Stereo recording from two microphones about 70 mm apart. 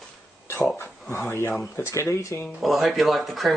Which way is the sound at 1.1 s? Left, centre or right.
Left.